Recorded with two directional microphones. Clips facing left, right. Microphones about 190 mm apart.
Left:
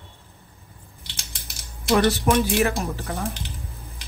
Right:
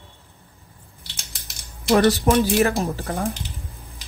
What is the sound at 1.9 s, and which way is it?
Speech, 35° right (ahead or behind).